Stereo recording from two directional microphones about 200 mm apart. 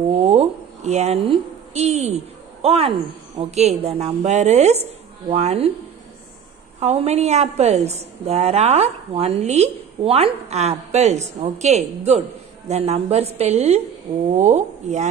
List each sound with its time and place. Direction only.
0.3 s a woman's voice: 35° right (ahead or behind)
6.8 s a woman's voice: 30° right (ahead or behind)